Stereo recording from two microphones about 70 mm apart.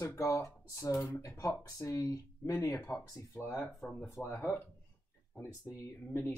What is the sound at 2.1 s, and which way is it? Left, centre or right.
Speech, left.